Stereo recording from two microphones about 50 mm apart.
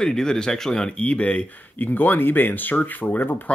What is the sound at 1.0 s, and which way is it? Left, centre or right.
Speech, left.